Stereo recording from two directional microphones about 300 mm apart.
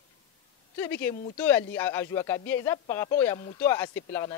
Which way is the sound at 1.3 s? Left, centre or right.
Centre.